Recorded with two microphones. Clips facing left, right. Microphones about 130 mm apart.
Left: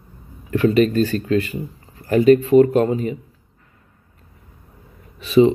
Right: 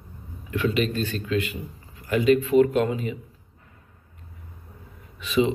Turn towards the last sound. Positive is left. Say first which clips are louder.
# left 9 dB
turn(degrees=35)  # may be behind; listen again after turning